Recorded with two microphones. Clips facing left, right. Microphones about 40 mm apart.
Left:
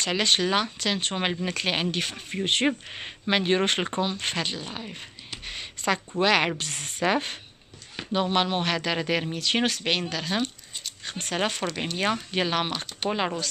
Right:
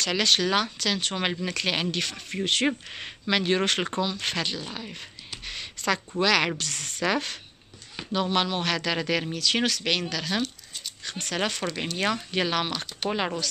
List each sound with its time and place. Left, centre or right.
0.0 s speech: centre
4.2 s speech: centre